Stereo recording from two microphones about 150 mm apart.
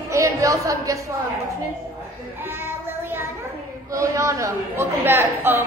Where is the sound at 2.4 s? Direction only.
15° right (ahead or behind).